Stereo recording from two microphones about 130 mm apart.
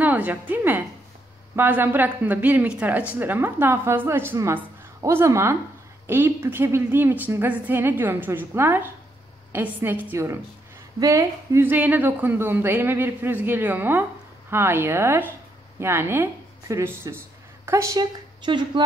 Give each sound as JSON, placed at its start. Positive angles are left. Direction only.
{"t": 0.0, "sound": "a woman's voice", "side_deg": -15}